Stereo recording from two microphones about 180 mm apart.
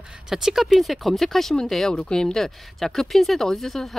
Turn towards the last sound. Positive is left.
turn(degrees=0)  # may be behind; listen again after turning